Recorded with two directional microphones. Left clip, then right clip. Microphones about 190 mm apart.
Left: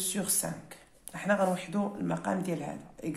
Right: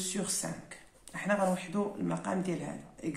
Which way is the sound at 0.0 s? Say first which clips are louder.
Left 2 dB; 35° left (ahead or behind).